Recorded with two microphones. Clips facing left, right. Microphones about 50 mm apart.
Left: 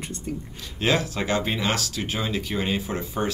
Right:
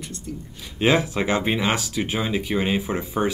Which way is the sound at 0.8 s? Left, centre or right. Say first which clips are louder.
Right 4 dB; centre.